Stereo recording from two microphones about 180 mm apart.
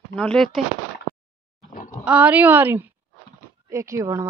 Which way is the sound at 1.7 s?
45° left (ahead or behind).